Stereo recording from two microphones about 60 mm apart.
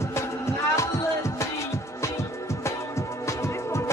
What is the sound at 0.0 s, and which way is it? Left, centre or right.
Music, left.